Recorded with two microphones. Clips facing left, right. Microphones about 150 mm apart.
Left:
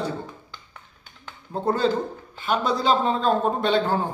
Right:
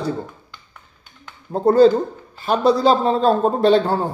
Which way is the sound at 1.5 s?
40° right (ahead or behind).